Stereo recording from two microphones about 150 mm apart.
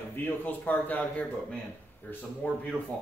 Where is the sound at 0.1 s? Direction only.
15° left (ahead or behind).